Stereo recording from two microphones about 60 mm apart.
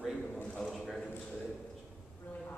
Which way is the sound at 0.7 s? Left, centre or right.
Centre.